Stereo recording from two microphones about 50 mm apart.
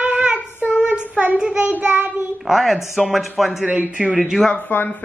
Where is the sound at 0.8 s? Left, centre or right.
Right.